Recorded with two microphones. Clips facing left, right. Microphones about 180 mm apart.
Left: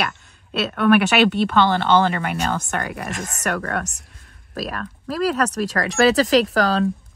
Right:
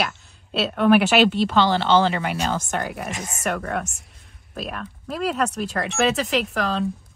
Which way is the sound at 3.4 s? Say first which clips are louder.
Left 1 dB; 75° left (ahead or behind).